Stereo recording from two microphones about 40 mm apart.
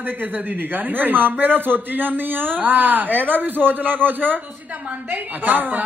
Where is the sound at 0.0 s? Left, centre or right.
Right.